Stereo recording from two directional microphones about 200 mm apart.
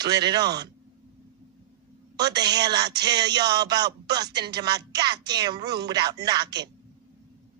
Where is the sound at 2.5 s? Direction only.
20° right (ahead or behind).